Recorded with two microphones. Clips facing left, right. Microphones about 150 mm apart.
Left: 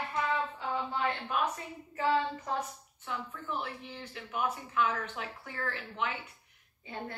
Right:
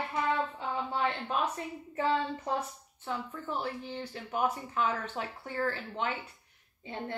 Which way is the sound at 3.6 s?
30° right (ahead or behind).